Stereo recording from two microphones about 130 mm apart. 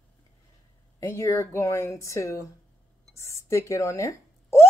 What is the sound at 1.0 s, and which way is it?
Speech, 25° left (ahead or behind).